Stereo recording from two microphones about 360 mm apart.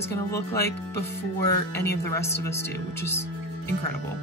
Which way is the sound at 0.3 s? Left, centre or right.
Centre.